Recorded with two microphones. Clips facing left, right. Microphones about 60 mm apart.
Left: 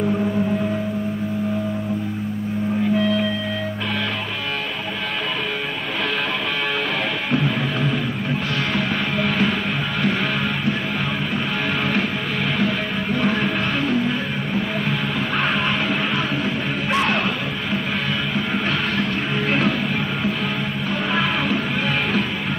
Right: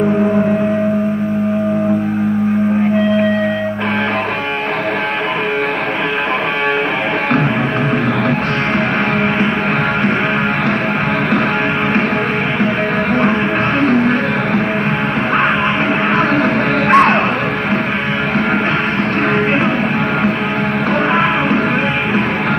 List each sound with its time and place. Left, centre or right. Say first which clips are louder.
13.8 s music: right 8 dB; right
16.9 s music: right 11 dB; right